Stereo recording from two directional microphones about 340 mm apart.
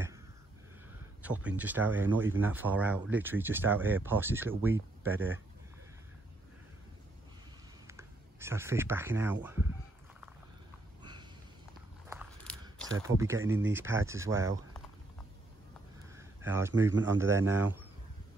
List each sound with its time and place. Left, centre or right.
1.2 s speech: centre
4.7 s speech: right
7.8 s speech: centre
11.0 s a sound: centre
12.1 s biting: centre
13.0 s speech: centre
16.2 s a sound: centre
16.8 s speech: centre